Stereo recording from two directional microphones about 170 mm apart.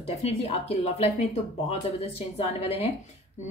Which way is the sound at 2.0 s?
35° left (ahead or behind).